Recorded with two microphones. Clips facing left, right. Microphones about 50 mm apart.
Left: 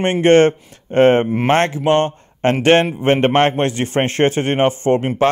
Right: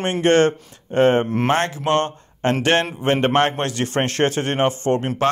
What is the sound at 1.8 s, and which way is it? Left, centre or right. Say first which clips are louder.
A man's voice: left 4 dB; left.